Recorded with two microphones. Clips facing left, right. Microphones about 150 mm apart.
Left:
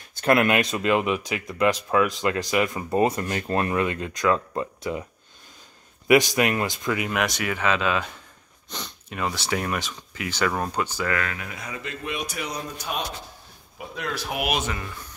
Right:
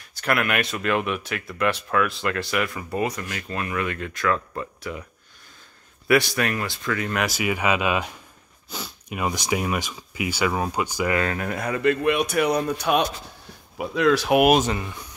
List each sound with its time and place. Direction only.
0.2 s speech: 25° left (ahead or behind)
3.0 s speech: 30° left (ahead or behind)
3.7 s speech: 25° left (ahead or behind)
6.0 s speech: 15° left (ahead or behind)
7.1 s speech: centre (ahead or behind)
11.3 s speech: 55° right (ahead or behind)
13.7 s speech: 90° right
14.4 s speech: 45° right (ahead or behind)
14.7 s speech: 20° right (ahead or behind)